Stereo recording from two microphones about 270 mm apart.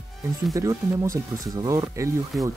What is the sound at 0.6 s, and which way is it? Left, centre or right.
Speech, centre.